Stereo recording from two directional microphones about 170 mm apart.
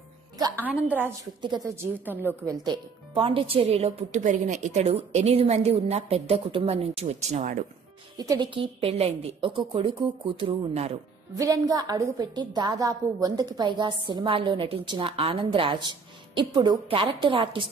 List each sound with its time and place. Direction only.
0.7 s a woman's voice: 10° right (ahead or behind)
1.4 s a woman's voice: 20° right (ahead or behind)
2.6 s a woman's voice: 30° right (ahead or behind); by 7.6 s 45° right (ahead or behind)
8.2 s a woman's voice: 25° right (ahead or behind)
11.3 s a woman's voice: 20° right (ahead or behind)